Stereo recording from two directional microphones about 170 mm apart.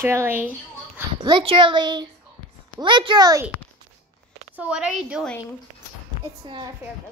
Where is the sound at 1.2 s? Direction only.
30° right (ahead or behind).